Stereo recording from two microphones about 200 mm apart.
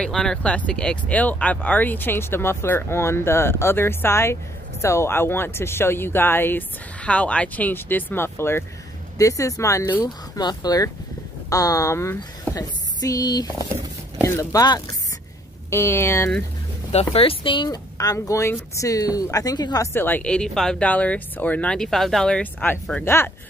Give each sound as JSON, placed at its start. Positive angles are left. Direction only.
{"t": 0.0, "sound": "speech", "side_deg": 5}
{"t": 16.9, "sound": "speech", "side_deg": 30}